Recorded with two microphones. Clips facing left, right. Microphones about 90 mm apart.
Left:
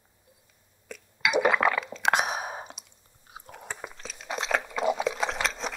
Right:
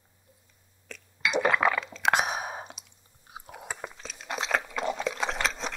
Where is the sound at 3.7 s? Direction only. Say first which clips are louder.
Even; centre (ahead or behind).